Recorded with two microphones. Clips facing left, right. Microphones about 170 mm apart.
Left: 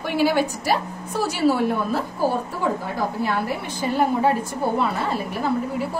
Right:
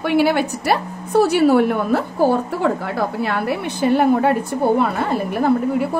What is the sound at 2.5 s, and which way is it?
A woman's voice, 75° right (ahead or behind).